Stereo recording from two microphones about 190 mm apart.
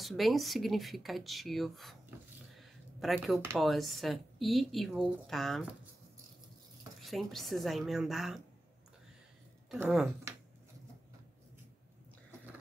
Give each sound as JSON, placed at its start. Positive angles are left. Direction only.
{"t": 0.0, "sound": "speech", "side_deg": 0}
{"t": 2.0, "sound": "a sound", "side_deg": 0}
{"t": 3.5, "sound": "speech", "side_deg": 0}
{"t": 7.1, "sound": "speech", "side_deg": 0}
{"t": 9.7, "sound": "speech", "side_deg": 0}